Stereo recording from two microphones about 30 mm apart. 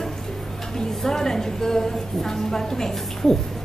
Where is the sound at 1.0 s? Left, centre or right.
Centre.